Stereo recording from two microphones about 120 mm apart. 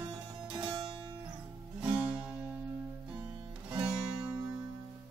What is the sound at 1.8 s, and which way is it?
Music, 10° right (ahead or behind).